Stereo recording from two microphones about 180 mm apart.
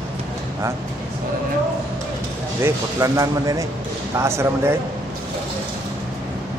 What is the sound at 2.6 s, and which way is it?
Speech, 15° right (ahead or behind).